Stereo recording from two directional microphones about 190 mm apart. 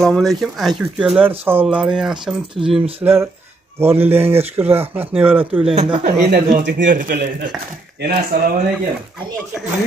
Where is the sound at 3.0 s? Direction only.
10° right (ahead or behind).